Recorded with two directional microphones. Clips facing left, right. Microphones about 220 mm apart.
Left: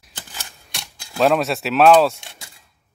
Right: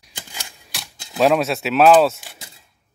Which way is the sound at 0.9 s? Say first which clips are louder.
Even; 20° right (ahead or behind).